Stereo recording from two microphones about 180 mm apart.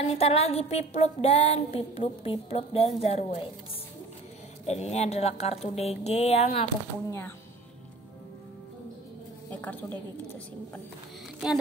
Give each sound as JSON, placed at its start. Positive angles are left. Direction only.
{"t": 0.0, "sound": "a woman's voice", "side_deg": 35}
{"t": 4.6, "sound": "a woman's voice", "side_deg": 35}
{"t": 7.1, "sound": "speech", "side_deg": 15}
{"t": 9.5, "sound": "a woman's voice", "side_deg": 10}